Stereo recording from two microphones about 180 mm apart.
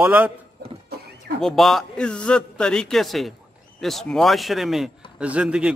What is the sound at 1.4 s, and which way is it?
A man's voice, centre (ahead or behind).